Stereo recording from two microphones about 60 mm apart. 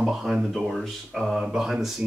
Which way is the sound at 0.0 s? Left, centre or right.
Centre.